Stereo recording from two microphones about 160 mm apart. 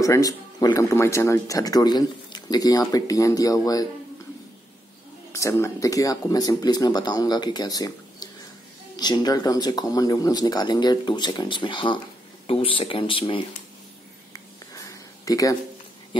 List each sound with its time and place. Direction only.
0.0 s speech: 20° left (ahead or behind)
5.3 s speech: 15° left (ahead or behind); by 13.4 s 35° left (ahead or behind)
14.7 s a sound: 20° left (ahead or behind)